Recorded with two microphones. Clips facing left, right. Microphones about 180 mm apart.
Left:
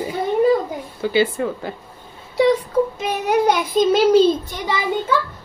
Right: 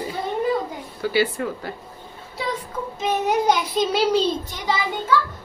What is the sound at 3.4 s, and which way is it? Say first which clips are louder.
Child singing: left 4 dB; 55° left (ahead or behind).